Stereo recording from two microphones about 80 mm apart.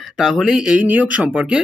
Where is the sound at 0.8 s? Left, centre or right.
Centre.